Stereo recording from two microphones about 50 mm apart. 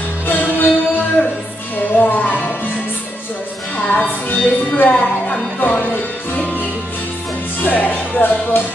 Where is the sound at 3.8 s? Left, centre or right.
Left.